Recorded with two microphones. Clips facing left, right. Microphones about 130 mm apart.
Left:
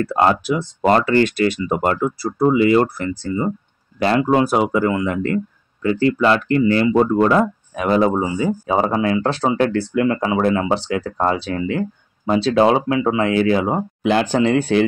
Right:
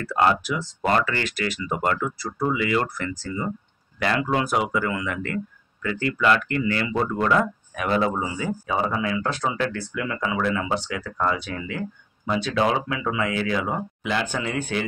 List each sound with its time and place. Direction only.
0.1 s speech: 30° left (ahead or behind)
8.2 s speech: 25° left (ahead or behind)
8.7 s speech: 40° left (ahead or behind)